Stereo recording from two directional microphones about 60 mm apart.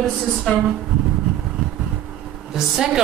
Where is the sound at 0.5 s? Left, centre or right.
Centre.